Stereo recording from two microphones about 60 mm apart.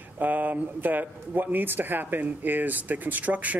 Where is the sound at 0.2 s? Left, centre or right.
Right.